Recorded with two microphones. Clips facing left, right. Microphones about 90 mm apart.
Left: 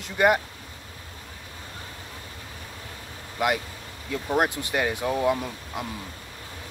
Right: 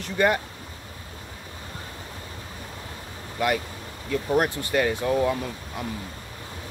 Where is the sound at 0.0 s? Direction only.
15° left (ahead or behind).